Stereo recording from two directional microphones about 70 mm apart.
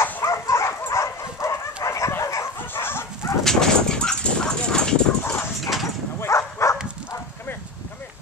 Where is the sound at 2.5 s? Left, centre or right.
Left.